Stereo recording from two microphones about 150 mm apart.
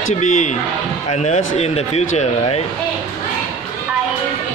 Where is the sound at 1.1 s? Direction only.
50° left (ahead or behind).